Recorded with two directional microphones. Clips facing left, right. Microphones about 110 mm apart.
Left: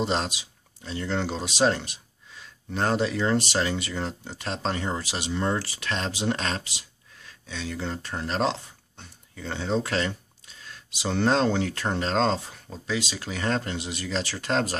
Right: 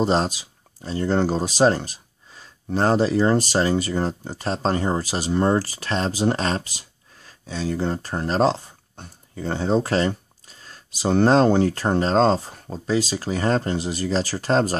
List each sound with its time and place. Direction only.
0.0 s speech: 40° right (ahead or behind)